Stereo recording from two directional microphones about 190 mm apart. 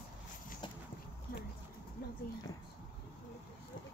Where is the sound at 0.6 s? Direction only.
25° left (ahead or behind).